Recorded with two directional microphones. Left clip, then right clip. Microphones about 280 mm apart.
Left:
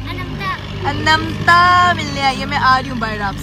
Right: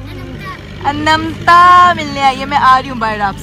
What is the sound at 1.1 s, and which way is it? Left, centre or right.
Speech, centre.